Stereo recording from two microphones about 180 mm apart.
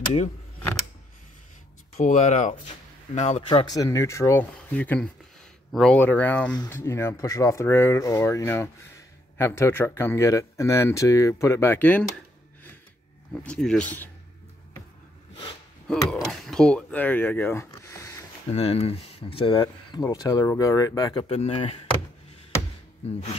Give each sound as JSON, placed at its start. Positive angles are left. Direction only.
{"t": 2.0, "sound": "speech", "side_deg": 40}
{"t": 3.4, "sound": "speech", "side_deg": 25}
{"t": 13.3, "sound": "speech", "side_deg": 5}
{"t": 15.9, "sound": "speech", "side_deg": 5}
{"t": 18.5, "sound": "speech", "side_deg": 35}